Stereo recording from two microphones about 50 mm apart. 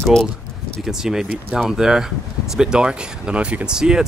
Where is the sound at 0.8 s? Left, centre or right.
Centre.